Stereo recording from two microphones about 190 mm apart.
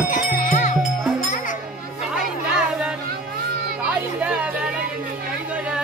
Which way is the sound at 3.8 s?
5° right (ahead or behind).